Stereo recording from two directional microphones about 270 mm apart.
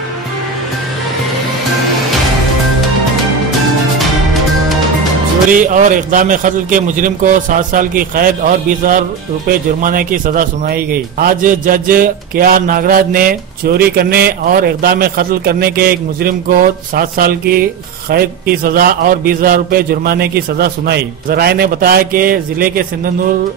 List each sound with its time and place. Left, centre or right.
5.7 s a man's voice: right